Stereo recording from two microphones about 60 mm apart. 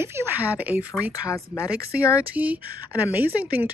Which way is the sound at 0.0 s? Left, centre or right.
Right.